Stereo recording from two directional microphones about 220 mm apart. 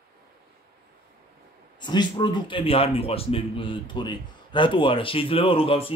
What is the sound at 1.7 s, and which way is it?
A man's voice, 20° left (ahead or behind).